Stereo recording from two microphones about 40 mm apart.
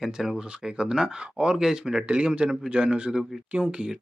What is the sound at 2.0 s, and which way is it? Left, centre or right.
Speech, right.